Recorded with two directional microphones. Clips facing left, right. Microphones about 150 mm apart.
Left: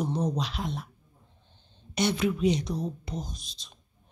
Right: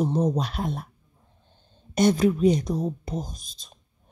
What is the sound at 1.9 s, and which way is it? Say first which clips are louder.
A woman's voice: right 7 dB; 45° right (ahead or behind).